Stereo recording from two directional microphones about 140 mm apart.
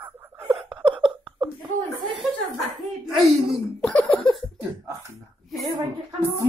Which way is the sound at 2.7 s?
Centre (ahead or behind).